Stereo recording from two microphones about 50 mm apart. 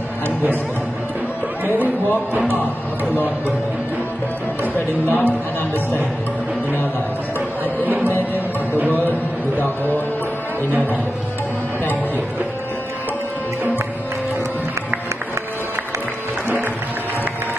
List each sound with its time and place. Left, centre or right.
4.7 s speech: left